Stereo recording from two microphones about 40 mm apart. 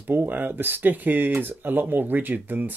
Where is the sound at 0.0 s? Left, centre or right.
Right.